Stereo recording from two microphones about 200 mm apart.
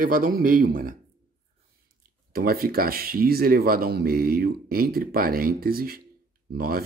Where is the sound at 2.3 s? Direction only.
50° right (ahead or behind).